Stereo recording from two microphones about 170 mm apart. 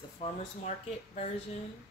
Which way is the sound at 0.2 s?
40° left (ahead or behind).